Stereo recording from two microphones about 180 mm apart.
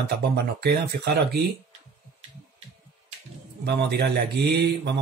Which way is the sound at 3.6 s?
65° right (ahead or behind).